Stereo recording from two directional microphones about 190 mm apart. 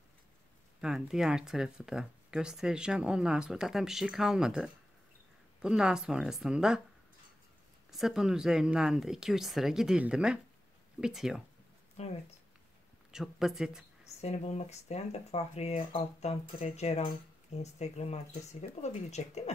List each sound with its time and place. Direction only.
0.7 s speech: 5° right (ahead or behind)
7.9 s speech: centre (ahead or behind)
12.0 s speech: 35° left (ahead or behind)
13.1 s speech: centre (ahead or behind)
14.2 s speech: 35° left (ahead or behind)